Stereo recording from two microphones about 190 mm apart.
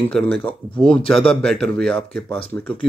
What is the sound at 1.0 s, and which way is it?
Speech, 30° left (ahead or behind).